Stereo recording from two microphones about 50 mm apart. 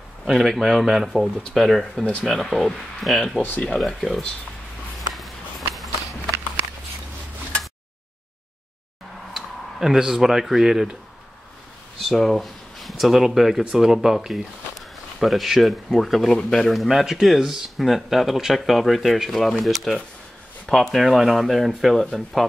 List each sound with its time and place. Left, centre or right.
0.2 s speech: centre
5.1 s a sound: centre
9.3 s speech: centre
12.0 s speech: centre
16.3 s speech: centre
16.6 s speech: centre